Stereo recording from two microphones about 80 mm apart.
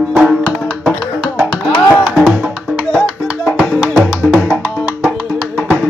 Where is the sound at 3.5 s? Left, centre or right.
Centre.